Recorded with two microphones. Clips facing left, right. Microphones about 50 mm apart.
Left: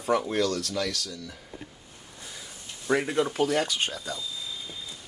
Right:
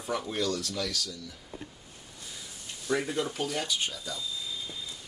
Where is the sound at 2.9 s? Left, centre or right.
Left.